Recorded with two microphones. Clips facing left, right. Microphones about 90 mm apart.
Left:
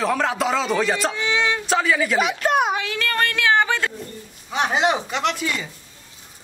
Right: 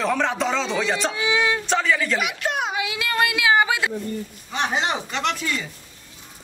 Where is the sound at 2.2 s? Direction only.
40° left (ahead or behind).